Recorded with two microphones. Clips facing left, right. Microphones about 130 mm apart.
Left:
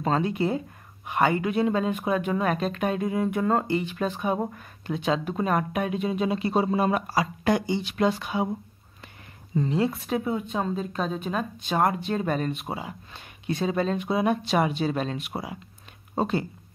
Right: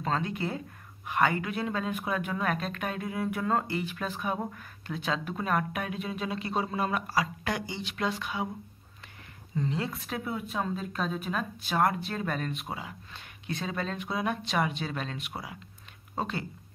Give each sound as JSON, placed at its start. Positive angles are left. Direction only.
{"t": 0.0, "sound": "speech", "side_deg": 20}
{"t": 3.6, "sound": "speech", "side_deg": -5}
{"t": 4.0, "sound": "speech", "side_deg": 25}
{"t": 7.1, "sound": "speech", "side_deg": 35}
{"t": 7.6, "sound": "speech", "side_deg": 20}
{"t": 9.7, "sound": "speech", "side_deg": 20}
{"t": 11.7, "sound": "speech", "side_deg": 20}